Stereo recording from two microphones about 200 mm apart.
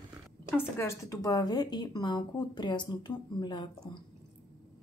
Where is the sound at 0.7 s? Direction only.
15° left (ahead or behind).